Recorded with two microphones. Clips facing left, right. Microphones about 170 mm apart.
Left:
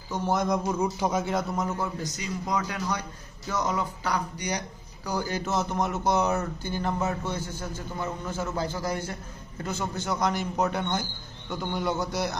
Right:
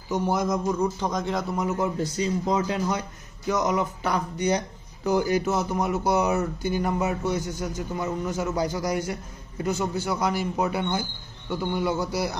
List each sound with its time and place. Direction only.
0.1 s speech: 5° right (ahead or behind)
0.7 s speech: 10° left (ahead or behind)
1.8 s a man's voice: 25° right (ahead or behind); by 12.4 s 10° right (ahead or behind)